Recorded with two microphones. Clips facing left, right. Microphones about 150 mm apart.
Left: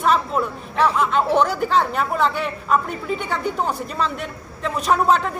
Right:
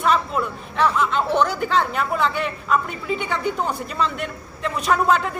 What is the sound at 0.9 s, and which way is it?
A woman's voice, 5° left (ahead or behind).